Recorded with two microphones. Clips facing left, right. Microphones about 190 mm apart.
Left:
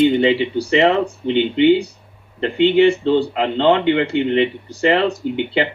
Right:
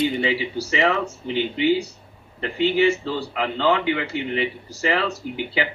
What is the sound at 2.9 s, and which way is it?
Speech, 30° left (ahead or behind).